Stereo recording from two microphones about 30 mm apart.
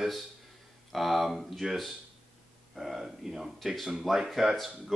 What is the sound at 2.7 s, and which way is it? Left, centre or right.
Speech, centre.